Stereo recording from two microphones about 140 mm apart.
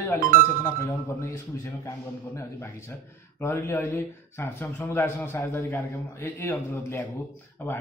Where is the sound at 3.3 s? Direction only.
20° left (ahead or behind).